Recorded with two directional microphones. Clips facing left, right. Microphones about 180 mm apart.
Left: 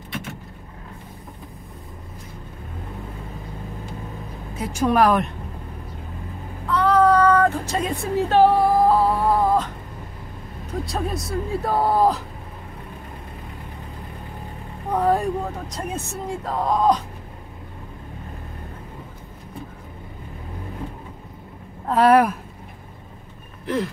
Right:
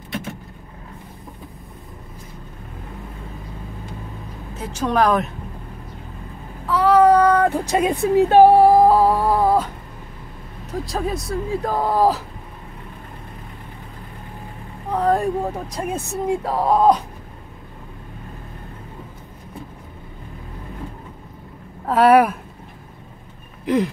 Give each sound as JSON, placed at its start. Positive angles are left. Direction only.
{"t": 4.6, "sound": "a woman's voice", "side_deg": 10}
{"t": 6.7, "sound": "a sound", "side_deg": -10}
{"t": 8.8, "sound": "wail", "side_deg": -10}
{"t": 10.7, "sound": "speech", "side_deg": 0}
{"t": 15.0, "sound": "speech", "side_deg": 0}
{"t": 15.9, "sound": "a woman's voice", "side_deg": -10}
{"t": 21.8, "sound": "speech", "side_deg": -5}
{"t": 23.6, "sound": "a sound", "side_deg": -15}